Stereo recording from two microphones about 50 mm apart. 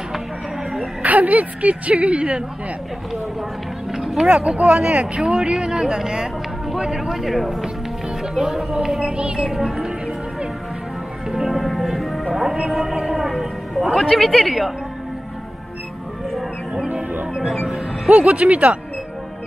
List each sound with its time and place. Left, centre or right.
1.0 s a woman's voice: right
4.2 s speech: centre
6.7 s speech: centre
11.3 s music: centre
12.3 s a sound: centre
13.9 s speech: centre
16.3 s music: centre
17.3 s speech: centre
18.0 s a woman's voice: right